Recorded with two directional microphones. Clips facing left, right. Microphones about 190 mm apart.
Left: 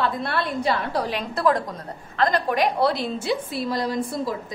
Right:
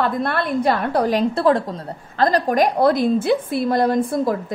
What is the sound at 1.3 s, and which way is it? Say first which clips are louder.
A woman's voice: right 4 dB; 30° right (ahead or behind).